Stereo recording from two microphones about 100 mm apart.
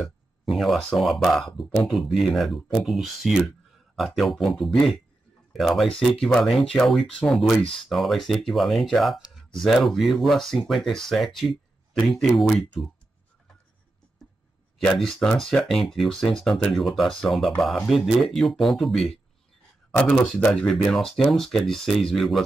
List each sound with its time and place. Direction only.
0.0 s speech: centre (ahead or behind)
14.8 s speech: centre (ahead or behind)
20.3 s speech: 10° left (ahead or behind)